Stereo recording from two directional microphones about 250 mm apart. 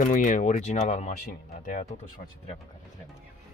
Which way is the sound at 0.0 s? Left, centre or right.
Left.